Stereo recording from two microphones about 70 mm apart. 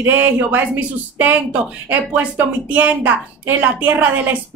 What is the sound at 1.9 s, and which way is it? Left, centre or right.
A woman's voice, right.